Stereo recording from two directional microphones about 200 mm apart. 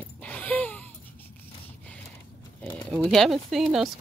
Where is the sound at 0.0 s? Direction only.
5° left (ahead or behind).